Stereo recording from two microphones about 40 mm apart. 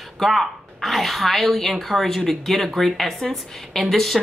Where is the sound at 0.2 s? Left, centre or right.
Centre.